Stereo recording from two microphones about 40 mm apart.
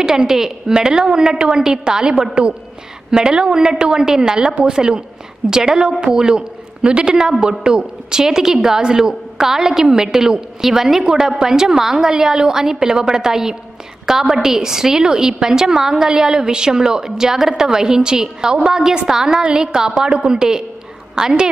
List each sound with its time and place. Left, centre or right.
0.3 s a man's voice: centre